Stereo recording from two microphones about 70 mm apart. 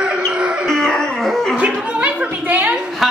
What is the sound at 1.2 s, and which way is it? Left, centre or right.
Dog, centre.